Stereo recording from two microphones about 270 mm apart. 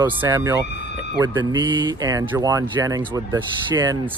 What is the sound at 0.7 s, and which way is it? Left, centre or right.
Speech, left.